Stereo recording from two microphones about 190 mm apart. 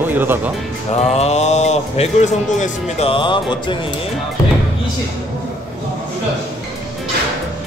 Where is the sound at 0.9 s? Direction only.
35° left (ahead or behind).